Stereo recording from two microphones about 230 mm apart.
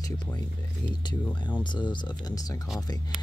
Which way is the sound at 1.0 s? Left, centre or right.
Centre.